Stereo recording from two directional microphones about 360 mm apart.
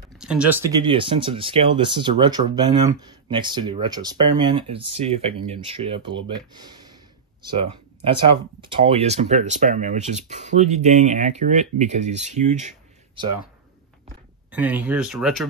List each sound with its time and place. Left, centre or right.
0.2 s speech: centre
7.4 s speech: centre
14.5 s speech: centre